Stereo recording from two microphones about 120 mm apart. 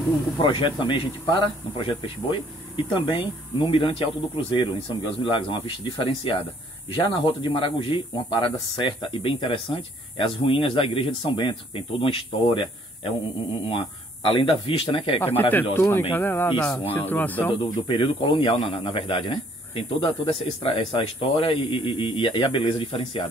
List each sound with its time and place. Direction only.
0.4 s speech: 40° left (ahead or behind)
15.7 s speech: 20° left (ahead or behind)
17.5 s speech: 45° left (ahead or behind)